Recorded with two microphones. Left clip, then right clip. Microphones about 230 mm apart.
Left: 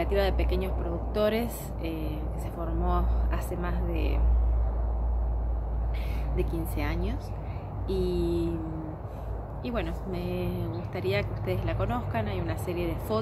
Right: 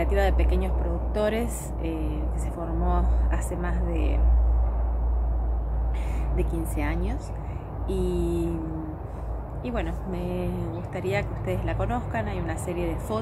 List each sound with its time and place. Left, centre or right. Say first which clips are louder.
0.0 s speech: right 2 dB; centre
6.3 s speech: right 2 dB; centre
9.7 s speech: right 2 dB; centre